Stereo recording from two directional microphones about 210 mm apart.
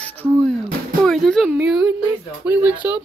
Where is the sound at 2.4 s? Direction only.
5° right (ahead or behind).